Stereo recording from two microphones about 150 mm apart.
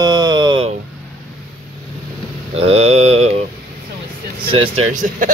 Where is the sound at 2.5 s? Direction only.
40° right (ahead or behind).